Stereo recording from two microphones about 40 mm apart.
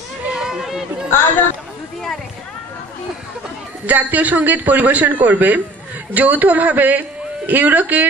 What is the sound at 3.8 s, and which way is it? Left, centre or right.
Speech, right.